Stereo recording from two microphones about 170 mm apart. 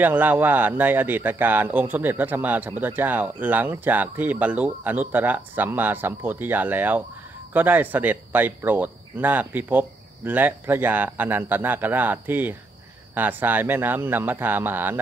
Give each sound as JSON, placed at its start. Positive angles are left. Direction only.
{"t": 0.0, "sound": "speech", "side_deg": -10}